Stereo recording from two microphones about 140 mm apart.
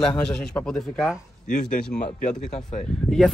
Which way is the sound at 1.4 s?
65° left (ahead or behind).